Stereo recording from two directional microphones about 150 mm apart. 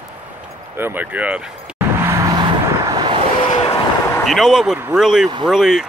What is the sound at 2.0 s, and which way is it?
Vehicle, 20° right (ahead or behind).